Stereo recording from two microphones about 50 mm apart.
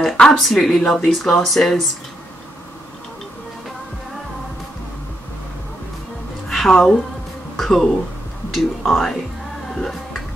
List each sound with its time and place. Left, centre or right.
0.3 s speech: centre
6.5 s speech: centre
9.8 s music: centre